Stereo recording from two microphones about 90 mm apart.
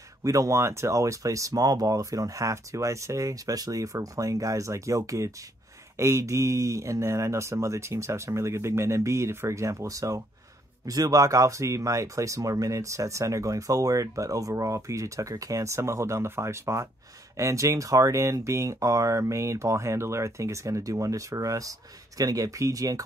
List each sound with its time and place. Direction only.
0.2 s speech: 35° right (ahead or behind)